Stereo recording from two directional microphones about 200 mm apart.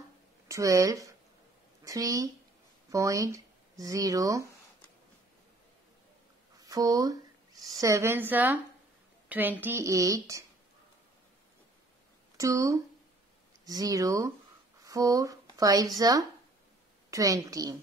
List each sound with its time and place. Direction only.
0.5 s a woman's voice: 15° right (ahead or behind)
6.6 s a sound: 15° right (ahead or behind)
7.8 s a woman's voice: 15° right (ahead or behind)
12.4 s a woman's voice: 15° right (ahead or behind)